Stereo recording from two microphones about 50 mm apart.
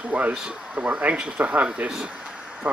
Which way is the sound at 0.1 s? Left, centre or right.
Right.